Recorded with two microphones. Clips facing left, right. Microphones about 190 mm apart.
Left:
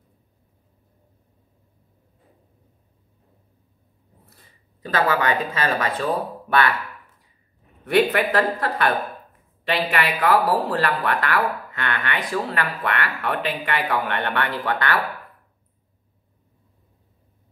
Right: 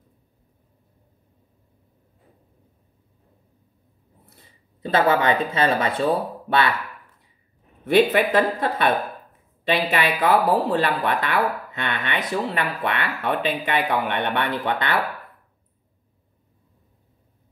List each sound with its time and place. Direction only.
4.8 s speech: 25° right (ahead or behind)
7.8 s speech: 20° right (ahead or behind)